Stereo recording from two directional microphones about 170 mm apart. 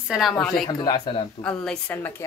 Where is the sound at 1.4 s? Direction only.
5° left (ahead or behind).